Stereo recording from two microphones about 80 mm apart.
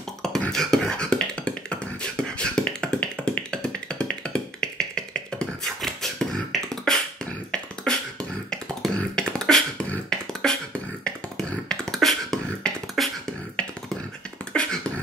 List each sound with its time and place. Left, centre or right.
0.5 s beatboxing: centre
14.5 s beatboxing: centre